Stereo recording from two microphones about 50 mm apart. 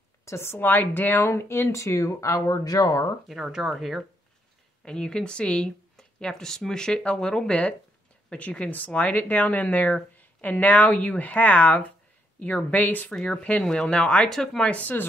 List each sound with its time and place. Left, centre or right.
0.2 s a woman's voice: left
1.3 s speech: left
3.3 s speech: centre
4.8 s speech: centre; by 13.1 s left
13.1 s speech: centre
14.3 s speech: centre
14.8 s speech: left